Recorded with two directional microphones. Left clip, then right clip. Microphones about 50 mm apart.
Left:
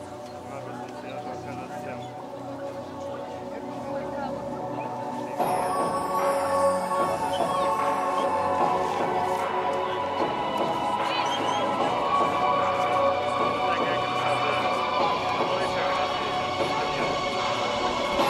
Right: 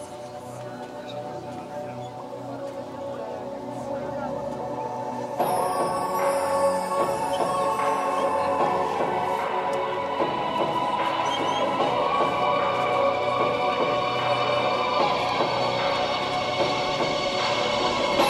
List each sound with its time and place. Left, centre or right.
5.4 s music: centre
7.2 s music: centre; by 18.3 s right